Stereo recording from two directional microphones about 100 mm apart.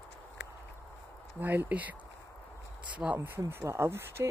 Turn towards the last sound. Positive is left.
turn(degrees=-25)  # may be behind; listen again after turning